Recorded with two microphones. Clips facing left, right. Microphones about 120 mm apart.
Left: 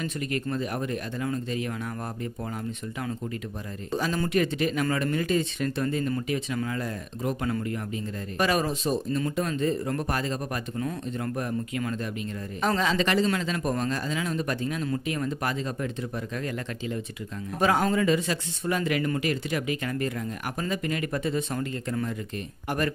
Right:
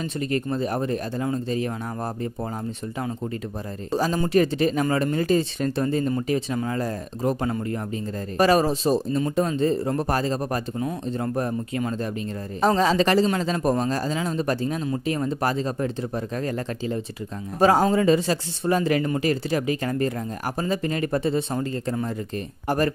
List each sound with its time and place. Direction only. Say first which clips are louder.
0.0 s speech: right 4 dB; 30° right (ahead or behind)
3.9 s speech: right 5 dB; 35° right (ahead or behind)